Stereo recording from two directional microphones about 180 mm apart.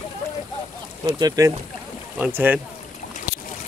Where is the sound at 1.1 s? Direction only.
20° right (ahead or behind).